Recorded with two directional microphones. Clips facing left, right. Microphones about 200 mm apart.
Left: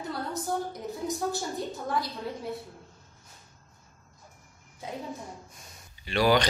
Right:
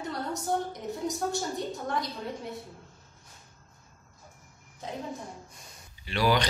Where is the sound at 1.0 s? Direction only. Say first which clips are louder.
Even; centre (ahead or behind).